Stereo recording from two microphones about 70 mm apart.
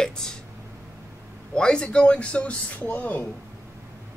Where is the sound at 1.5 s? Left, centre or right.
Centre.